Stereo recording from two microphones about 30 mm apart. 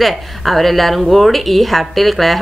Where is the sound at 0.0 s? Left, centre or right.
Centre.